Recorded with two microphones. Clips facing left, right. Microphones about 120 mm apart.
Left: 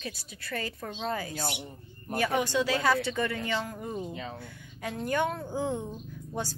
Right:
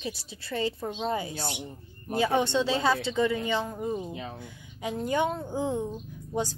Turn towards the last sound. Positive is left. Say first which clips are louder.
# right 4 dB
turn(degrees=-15)  # may be behind; listen again after turning